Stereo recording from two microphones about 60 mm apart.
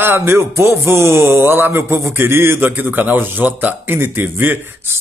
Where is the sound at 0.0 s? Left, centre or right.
Right.